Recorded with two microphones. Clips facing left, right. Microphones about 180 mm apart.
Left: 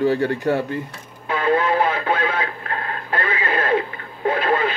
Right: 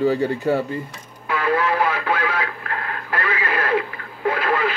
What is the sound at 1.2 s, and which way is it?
Radio, 25° left (ahead or behind).